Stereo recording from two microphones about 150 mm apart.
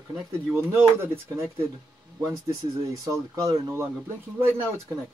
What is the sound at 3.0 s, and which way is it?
Speech, 25° right (ahead or behind).